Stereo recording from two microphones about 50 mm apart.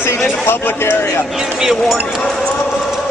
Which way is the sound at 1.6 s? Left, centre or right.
Centre.